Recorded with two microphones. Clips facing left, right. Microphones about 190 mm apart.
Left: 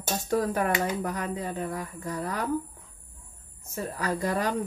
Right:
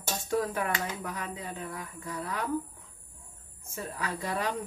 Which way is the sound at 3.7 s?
40° left (ahead or behind).